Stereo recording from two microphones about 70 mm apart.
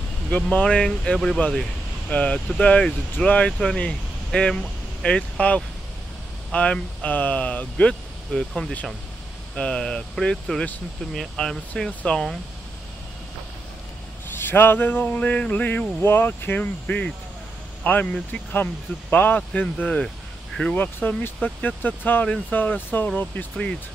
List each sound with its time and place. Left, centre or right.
0.4 s speech: centre
1.1 s speech: centre
2.0 s speech: centre
8.4 s speech: centre
14.3 s speech: left
16.8 s speech: centre